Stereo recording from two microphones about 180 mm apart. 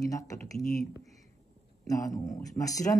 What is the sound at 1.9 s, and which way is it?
Speech, 20° left (ahead or behind).